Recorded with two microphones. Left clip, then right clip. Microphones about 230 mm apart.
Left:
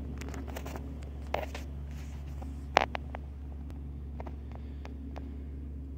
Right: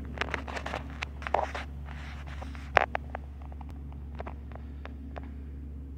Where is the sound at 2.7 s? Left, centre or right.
Left.